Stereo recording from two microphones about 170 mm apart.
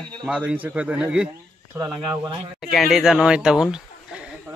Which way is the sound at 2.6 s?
Centre (ahead or behind).